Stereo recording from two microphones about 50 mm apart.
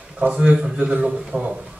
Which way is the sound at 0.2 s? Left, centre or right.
Right.